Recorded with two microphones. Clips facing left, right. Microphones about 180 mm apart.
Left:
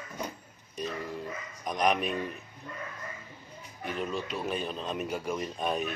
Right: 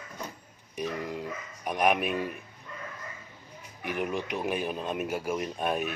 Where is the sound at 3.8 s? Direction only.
15° right (ahead or behind).